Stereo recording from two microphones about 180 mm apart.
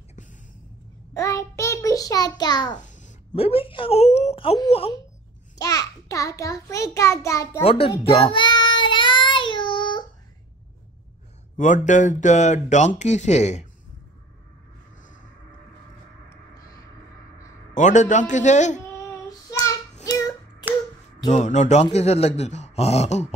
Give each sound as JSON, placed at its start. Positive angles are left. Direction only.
{"t": 1.1, "sound": "child singing", "side_deg": 15}
{"t": 2.8, "sound": "speech", "side_deg": 45}
{"t": 5.6, "sound": "a child's voice", "side_deg": 20}
{"t": 7.6, "sound": "child singing", "side_deg": 30}
{"t": 11.5, "sound": "speech", "side_deg": 45}
{"t": 15.0, "sound": "vehicle", "side_deg": 45}
{"t": 16.3, "sound": "a sound", "side_deg": 20}
{"t": 17.7, "sound": "a man's voice", "side_deg": 45}
{"t": 19.6, "sound": "child singing", "side_deg": 20}
{"t": 21.3, "sound": "speech", "side_deg": 40}